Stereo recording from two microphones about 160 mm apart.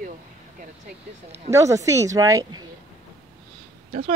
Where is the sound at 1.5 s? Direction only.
20° right (ahead or behind).